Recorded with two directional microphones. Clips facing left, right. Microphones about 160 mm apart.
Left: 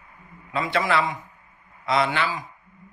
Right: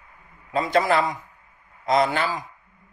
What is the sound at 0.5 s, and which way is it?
A man's voice, 40° right (ahead or behind).